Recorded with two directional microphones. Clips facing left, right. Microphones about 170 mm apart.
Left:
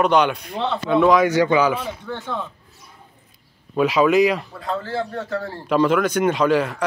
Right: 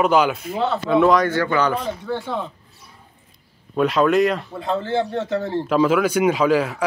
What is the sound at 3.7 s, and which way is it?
Speech, centre (ahead or behind).